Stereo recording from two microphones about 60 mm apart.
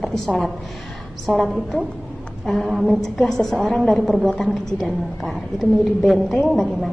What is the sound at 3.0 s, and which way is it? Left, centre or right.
A woman's voice, centre.